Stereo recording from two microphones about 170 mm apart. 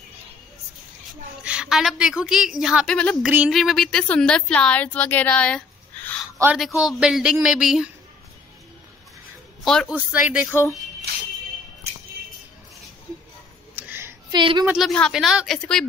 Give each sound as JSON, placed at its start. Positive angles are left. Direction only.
{"t": 1.4, "sound": "a woman's voice", "side_deg": -5}
{"t": 3.3, "sound": "a woman's voice", "side_deg": -5}
{"t": 9.7, "sound": "a woman's voice", "side_deg": 5}
{"t": 10.3, "sound": "speech", "side_deg": -5}
{"t": 11.1, "sound": "music", "side_deg": -70}
{"t": 13.7, "sound": "a sound", "side_deg": -10}
{"t": 14.3, "sound": "a woman's voice", "side_deg": -25}
{"t": 14.7, "sound": "a woman's voice", "side_deg": 0}